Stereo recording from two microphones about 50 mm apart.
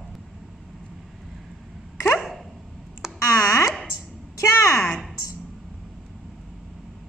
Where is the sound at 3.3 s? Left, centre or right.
Left.